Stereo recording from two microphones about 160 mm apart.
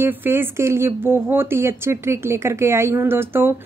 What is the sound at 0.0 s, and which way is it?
A woman's voice, 15° right (ahead or behind).